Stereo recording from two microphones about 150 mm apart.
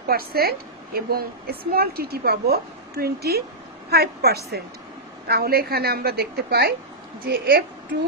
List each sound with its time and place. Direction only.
0.1 s a woman's voice: 90° right